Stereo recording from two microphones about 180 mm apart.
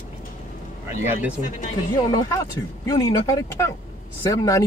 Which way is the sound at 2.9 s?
20° left (ahead or behind).